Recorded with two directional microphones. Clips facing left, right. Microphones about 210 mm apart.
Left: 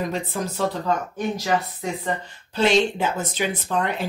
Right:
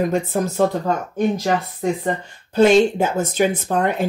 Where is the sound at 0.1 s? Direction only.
45° right (ahead or behind).